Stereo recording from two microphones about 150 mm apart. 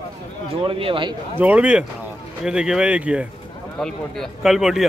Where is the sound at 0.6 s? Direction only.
35° right (ahead or behind).